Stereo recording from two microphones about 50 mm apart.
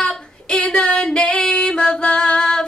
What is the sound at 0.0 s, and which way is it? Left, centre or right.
Female singing, centre.